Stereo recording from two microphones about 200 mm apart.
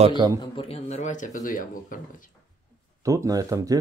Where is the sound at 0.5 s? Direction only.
30° left (ahead or behind).